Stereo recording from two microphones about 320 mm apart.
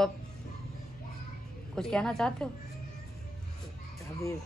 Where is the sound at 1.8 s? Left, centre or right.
Centre.